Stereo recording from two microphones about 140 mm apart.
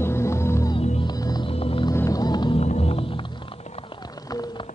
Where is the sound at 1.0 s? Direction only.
30° left (ahead or behind).